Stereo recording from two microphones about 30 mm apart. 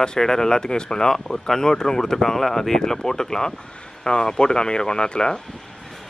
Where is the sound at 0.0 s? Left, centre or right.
Left.